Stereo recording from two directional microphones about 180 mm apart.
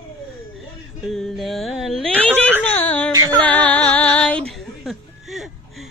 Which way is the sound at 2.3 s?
10° right (ahead or behind).